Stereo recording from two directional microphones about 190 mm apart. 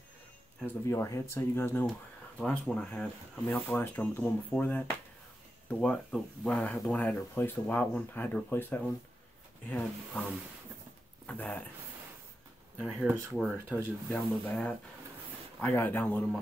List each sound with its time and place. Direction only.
0.6 s speech: 10° left (ahead or behind)
11.2 s speech: 5° left (ahead or behind)
12.7 s speech: 10° right (ahead or behind)
14.4 s speech: 5° left (ahead or behind)